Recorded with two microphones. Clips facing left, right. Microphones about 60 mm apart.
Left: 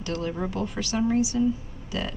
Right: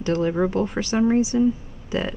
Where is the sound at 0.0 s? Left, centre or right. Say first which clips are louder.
Right 8 dB; right.